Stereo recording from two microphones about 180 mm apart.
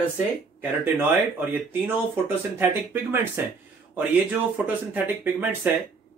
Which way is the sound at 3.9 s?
10° right (ahead or behind).